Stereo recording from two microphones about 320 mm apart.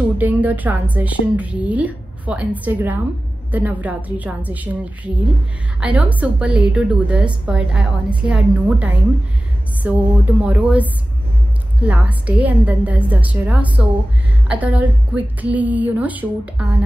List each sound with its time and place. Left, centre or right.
0.2 s a woman's voice: centre